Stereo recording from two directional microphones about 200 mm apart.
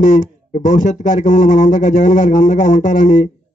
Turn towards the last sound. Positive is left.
turn(degrees=40)  # may be behind; listen again after turning